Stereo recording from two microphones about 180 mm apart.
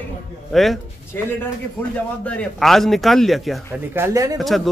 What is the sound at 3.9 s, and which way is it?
Speech, 15° right (ahead or behind).